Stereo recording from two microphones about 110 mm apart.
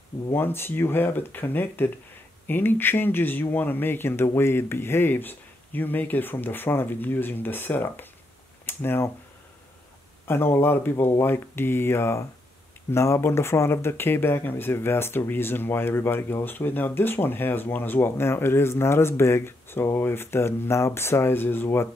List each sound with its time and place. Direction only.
0.3 s speech: 20° left (ahead or behind)
10.2 s speech: 20° left (ahead or behind)